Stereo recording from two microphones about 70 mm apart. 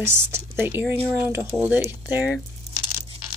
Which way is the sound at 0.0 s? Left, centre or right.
Right.